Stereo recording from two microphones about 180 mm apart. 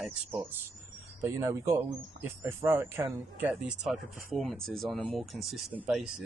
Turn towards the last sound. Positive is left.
turn(degrees=-5)  # may be behind; listen again after turning